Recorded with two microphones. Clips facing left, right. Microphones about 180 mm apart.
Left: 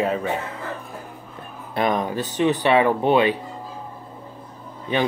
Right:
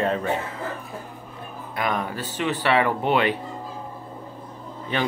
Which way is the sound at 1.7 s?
20° left (ahead or behind).